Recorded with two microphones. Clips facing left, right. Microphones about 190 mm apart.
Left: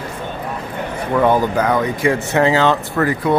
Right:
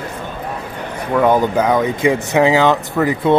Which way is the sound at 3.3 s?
25° right (ahead or behind).